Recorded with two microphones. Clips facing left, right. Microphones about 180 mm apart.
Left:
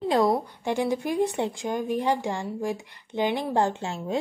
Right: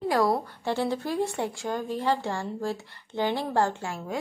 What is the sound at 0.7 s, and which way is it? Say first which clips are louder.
A woman's voice: left 2 dB; 15° left (ahead or behind).